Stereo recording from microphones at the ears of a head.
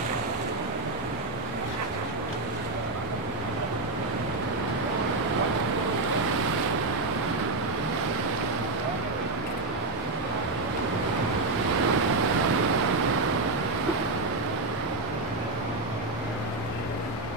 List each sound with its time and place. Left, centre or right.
11.7 s waves: right